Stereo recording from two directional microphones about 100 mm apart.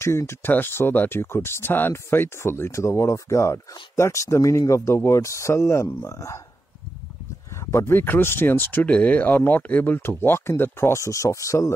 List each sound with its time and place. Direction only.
0.0 s speech: 25° left (ahead or behind)
7.7 s speech: 20° left (ahead or behind)